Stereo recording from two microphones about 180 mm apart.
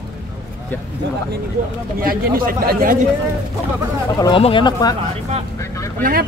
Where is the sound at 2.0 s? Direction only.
55° right (ahead or behind).